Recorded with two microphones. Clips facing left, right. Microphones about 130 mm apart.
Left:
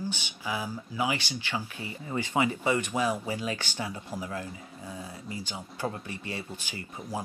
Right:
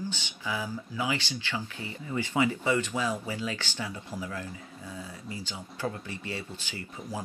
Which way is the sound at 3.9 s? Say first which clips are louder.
Left 1 dB; 40° left (ahead or behind).